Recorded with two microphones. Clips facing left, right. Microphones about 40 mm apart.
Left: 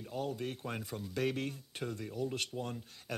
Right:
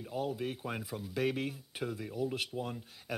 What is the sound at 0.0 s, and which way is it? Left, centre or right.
Speech, centre.